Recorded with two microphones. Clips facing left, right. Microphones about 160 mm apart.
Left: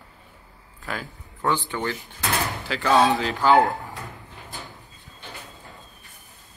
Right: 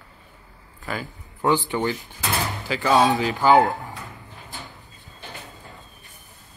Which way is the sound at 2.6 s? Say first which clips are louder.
Right 1 dB; 5° right (ahead or behind).